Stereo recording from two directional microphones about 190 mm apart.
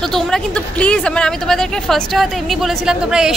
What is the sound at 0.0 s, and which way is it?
A woman's voice, centre (ahead or behind).